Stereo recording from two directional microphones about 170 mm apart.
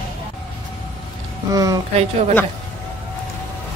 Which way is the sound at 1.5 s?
20° right (ahead or behind).